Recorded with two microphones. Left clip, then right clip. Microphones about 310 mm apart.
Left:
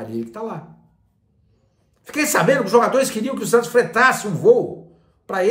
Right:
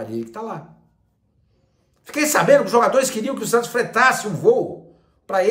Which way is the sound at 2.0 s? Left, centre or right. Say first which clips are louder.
Even; centre.